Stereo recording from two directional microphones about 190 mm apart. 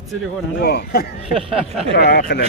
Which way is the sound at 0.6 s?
55° left (ahead or behind).